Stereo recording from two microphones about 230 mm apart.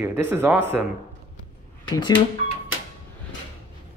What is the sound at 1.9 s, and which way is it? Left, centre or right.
Speech, centre.